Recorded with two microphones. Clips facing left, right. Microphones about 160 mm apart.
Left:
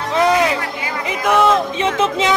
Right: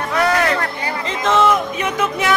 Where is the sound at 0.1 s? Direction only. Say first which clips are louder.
Left 3 dB; 20° left (ahead or behind).